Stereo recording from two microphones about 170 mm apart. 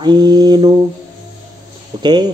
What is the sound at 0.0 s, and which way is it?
Speech, 25° right (ahead or behind).